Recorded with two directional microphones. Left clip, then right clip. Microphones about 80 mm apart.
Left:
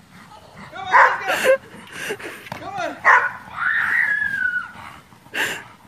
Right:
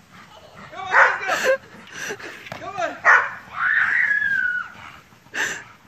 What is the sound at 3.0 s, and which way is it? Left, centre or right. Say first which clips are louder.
Dog: left 1 dB; centre.